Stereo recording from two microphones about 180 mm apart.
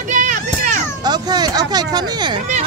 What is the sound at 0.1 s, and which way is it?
Children playing, 45° right (ahead or behind).